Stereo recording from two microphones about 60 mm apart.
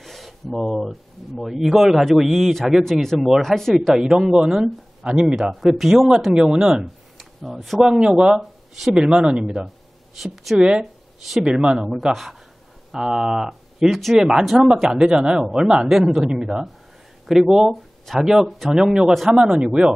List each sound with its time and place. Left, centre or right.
0.0 s a sound: centre
0.6 s a man's voice: centre
5.3 s speech: centre
6.8 s speech: centre
7.9 s speech: centre
8.4 s speech: centre
8.9 s speech: centre
10.1 s a man's voice: centre
17.3 s a man's voice: centre
19.5 s speech: centre